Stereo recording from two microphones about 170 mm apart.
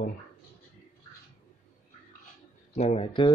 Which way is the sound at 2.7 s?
40° left (ahead or behind).